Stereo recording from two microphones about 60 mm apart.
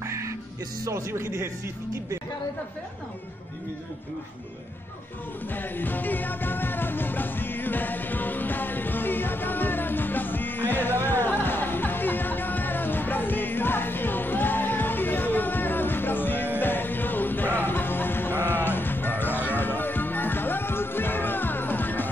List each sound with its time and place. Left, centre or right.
0.0 s music: right
0.8 s speech: right
5.5 s music: left